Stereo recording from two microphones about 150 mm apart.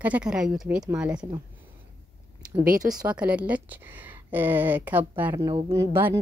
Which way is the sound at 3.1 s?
10° right (ahead or behind).